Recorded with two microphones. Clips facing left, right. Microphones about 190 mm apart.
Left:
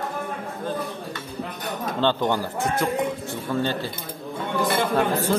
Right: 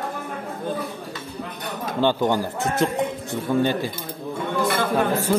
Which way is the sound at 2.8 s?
20° right (ahead or behind).